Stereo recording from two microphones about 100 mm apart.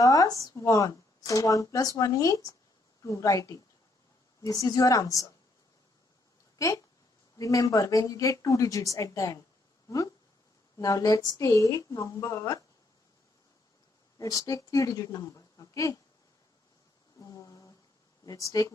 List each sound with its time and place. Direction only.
0.0 s speech: 35° left (ahead or behind)
6.6 s speech: 35° left (ahead or behind)
14.1 s speech: 35° left (ahead or behind)
17.2 s a sound: 35° left (ahead or behind)
18.2 s speech: 35° left (ahead or behind)